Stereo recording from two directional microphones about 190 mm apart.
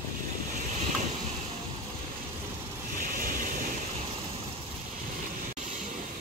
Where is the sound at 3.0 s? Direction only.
45° right (ahead or behind).